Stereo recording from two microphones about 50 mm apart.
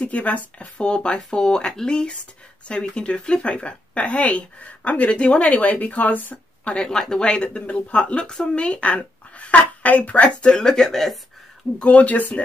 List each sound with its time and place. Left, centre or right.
0.0 s speech: left
6.7 s speech: centre
10.5 s speech: centre
11.8 s speech: left